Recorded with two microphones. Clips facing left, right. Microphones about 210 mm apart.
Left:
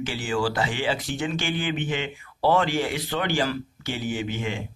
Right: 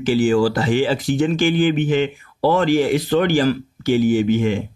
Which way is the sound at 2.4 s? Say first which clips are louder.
Right 6 dB; 40° right (ahead or behind).